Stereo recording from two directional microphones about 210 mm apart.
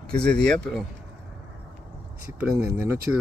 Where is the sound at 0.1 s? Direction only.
5° left (ahead or behind).